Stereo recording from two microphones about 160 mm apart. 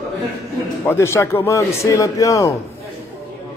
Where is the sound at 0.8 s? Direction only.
15° left (ahead or behind).